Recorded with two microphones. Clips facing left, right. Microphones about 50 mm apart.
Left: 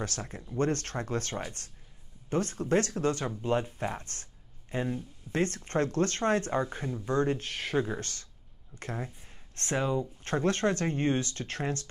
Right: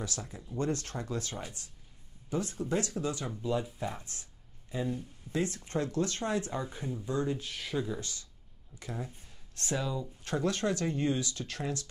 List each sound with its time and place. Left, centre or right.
0.0 s speech: left